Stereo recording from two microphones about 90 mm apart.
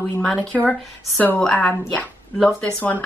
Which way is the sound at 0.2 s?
10° left (ahead or behind).